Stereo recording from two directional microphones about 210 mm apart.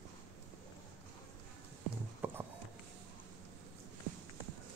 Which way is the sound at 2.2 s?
10° right (ahead or behind).